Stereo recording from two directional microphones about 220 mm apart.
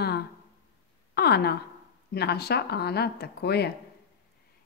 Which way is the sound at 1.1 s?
45° left (ahead or behind).